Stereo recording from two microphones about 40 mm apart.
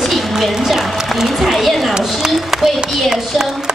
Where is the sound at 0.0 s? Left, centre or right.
Centre.